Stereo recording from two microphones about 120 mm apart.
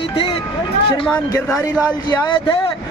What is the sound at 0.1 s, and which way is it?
Music, 45° left (ahead or behind).